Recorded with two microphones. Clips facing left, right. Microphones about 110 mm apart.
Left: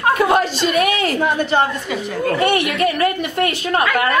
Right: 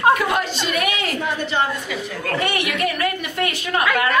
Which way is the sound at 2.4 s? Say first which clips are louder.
Left 4 dB; 30° left (ahead or behind).